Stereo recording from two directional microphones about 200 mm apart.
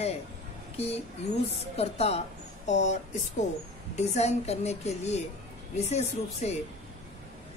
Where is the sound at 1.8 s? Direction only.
30° left (ahead or behind).